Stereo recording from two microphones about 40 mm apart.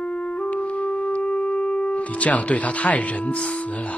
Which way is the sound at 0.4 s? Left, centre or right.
Left.